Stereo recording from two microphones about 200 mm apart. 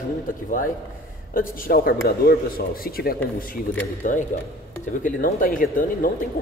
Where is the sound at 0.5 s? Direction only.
40° left (ahead or behind).